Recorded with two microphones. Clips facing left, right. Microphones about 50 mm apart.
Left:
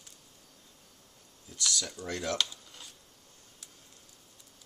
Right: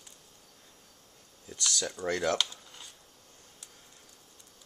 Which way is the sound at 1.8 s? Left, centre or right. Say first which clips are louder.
Right 6 dB; right.